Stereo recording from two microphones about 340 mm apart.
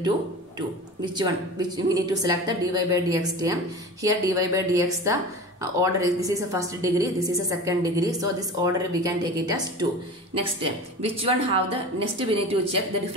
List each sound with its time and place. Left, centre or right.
1.1 s a woman's voice: centre